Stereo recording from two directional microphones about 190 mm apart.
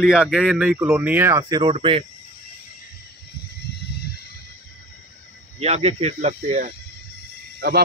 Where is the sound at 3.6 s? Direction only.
60° left (ahead or behind).